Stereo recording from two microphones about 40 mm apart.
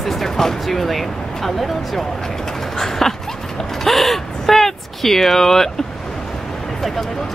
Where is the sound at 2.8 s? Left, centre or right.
Centre.